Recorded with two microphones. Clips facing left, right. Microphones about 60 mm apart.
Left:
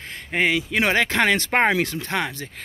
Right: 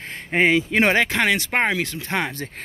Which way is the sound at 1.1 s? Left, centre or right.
Centre.